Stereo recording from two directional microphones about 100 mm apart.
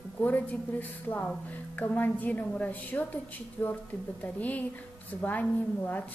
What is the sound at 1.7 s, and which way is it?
A woman's voice, 15° left (ahead or behind).